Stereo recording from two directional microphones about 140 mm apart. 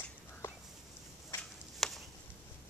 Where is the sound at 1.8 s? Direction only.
Centre (ahead or behind).